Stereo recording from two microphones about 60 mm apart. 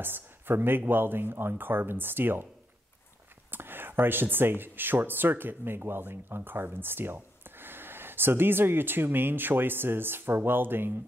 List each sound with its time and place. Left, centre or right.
0.0 s speech: right
3.5 s speech: right